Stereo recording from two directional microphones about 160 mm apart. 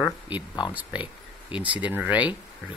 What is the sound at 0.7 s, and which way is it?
Speech, 10° right (ahead or behind).